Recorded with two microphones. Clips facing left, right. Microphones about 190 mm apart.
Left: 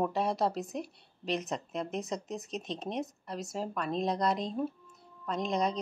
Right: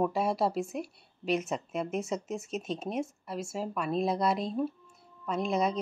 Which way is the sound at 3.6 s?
10° right (ahead or behind).